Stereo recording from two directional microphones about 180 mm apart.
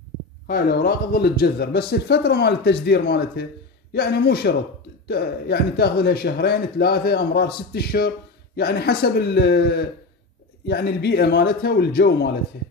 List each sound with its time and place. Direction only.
0.5 s speech: 55° left (ahead or behind)